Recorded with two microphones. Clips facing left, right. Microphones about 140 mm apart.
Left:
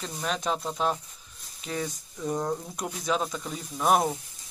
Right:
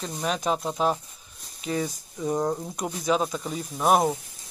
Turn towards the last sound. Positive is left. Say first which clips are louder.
# right 2 dB
turn(degrees=-10)  # may be behind; listen again after turning